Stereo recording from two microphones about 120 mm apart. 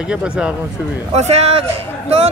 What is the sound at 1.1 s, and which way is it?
Speech, 65° right (ahead or behind).